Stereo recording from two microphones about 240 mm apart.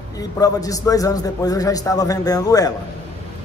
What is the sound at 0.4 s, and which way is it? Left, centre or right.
A man's voice, centre.